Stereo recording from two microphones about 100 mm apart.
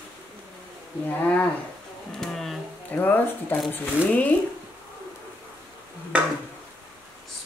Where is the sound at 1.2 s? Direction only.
15° left (ahead or behind).